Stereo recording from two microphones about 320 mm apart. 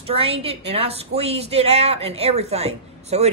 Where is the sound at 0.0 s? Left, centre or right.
Centre.